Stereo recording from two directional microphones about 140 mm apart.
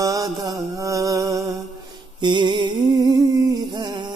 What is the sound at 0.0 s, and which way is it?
Music, 25° right (ahead or behind).